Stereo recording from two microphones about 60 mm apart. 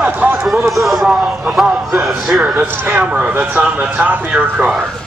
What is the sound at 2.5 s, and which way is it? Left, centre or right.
Speech, right.